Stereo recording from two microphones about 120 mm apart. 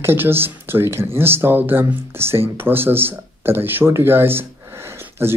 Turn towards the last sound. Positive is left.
turn(degrees=-20)  # may be behind; listen again after turning